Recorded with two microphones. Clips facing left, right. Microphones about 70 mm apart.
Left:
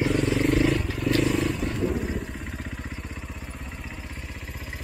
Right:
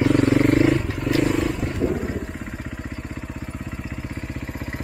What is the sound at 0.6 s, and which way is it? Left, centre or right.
Wild animals, centre.